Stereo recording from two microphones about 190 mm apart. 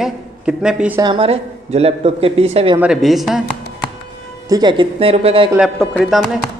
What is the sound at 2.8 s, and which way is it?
Speech, centre (ahead or behind).